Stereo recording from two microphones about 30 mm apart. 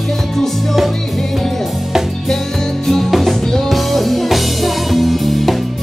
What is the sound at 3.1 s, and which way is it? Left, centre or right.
Music, centre.